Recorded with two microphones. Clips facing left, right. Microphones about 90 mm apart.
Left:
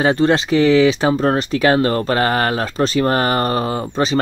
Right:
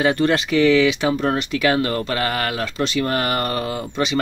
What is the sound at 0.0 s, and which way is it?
Speech, 30° left (ahead or behind).